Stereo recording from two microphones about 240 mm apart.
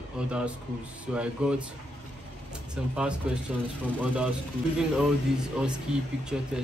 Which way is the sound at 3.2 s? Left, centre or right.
Centre.